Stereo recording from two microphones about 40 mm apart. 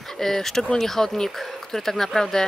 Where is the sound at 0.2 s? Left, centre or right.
Centre.